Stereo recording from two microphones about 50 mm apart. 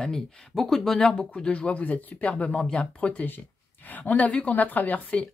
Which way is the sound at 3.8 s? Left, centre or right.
Left.